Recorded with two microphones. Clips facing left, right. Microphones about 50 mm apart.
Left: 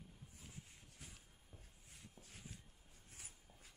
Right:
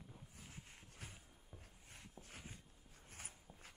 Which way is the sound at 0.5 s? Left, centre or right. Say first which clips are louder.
Right 1 dB; right.